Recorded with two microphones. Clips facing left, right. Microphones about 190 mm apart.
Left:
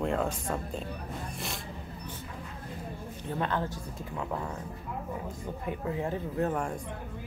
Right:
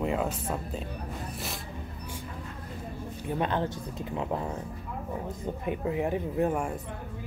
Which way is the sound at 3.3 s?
20° right (ahead or behind).